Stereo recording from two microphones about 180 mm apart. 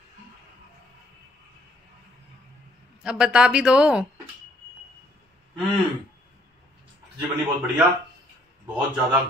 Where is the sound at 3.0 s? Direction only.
5° right (ahead or behind).